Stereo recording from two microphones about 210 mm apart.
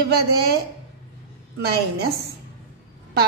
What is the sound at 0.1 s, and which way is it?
Speech, 50° right (ahead or behind).